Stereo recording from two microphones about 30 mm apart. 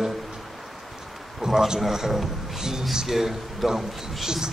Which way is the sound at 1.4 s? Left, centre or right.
Right.